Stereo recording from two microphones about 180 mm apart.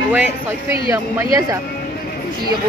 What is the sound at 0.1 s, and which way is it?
Speech, 10° right (ahead or behind).